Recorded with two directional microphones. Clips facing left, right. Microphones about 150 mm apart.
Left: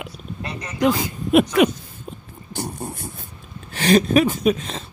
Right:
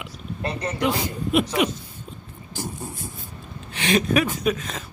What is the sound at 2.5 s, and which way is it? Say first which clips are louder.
Beatboxing: left 3 dB; 65° left (ahead or behind).